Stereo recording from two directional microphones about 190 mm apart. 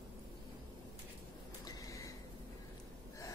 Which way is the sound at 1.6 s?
15° left (ahead or behind).